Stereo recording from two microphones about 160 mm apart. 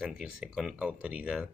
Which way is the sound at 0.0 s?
5° right (ahead or behind).